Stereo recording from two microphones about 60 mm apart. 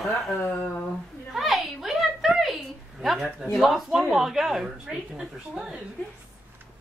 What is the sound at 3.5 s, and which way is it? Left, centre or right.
A woman's voice, centre.